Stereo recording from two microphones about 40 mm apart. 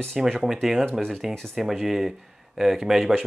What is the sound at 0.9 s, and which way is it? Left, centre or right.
Speech, centre.